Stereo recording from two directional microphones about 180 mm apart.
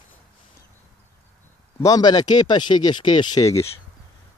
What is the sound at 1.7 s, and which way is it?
Speech, 20° left (ahead or behind).